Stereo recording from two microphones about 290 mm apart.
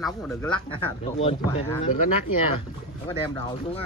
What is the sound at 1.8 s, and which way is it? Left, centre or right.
Speech, left.